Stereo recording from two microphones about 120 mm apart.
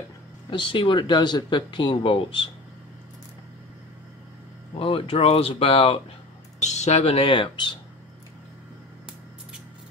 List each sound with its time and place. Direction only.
0.5 s speech: 45° left (ahead or behind)
4.7 s speech: 50° left (ahead or behind)
6.6 s speech: 75° left (ahead or behind); by 7.8 s 40° left (ahead or behind)